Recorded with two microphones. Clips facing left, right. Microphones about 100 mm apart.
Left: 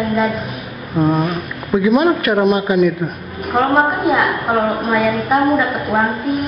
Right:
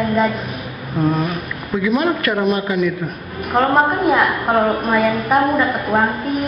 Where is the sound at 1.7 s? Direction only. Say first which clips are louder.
Left 4 dB; 20° left (ahead or behind).